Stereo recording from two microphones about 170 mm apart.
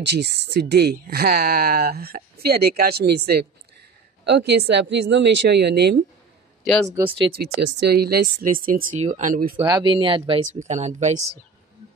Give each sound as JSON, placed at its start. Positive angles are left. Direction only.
{"t": 0.0, "sound": "speech", "side_deg": -85}
{"t": 6.6, "sound": "speech", "side_deg": 0}
{"t": 7.3, "sound": "speech", "side_deg": -65}
{"t": 9.0, "sound": "speech", "side_deg": -45}
{"t": 9.7, "sound": "speech", "side_deg": -25}
{"t": 10.4, "sound": "speech", "side_deg": -45}